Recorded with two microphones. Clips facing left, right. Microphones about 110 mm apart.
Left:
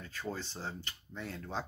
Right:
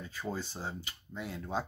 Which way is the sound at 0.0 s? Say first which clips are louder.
Right 2 dB; 15° right (ahead or behind).